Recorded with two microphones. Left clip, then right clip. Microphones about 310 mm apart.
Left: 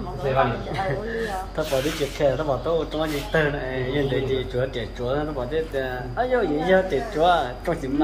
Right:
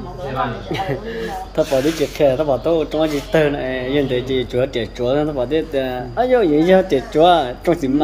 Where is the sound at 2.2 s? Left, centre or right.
Right.